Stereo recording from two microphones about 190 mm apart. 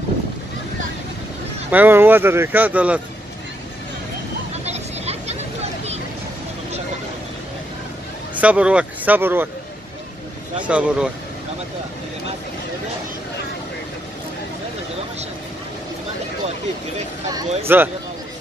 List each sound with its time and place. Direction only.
1.7 s speech: 10° right (ahead or behind)
4.6 s vehicle: 35° right (ahead or behind)
8.4 s speech: 5° right (ahead or behind)
10.6 s speech: 5° right (ahead or behind)
17.3 s speech: 20° right (ahead or behind)